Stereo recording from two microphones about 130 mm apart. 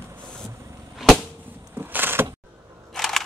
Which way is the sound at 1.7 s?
15° right (ahead or behind).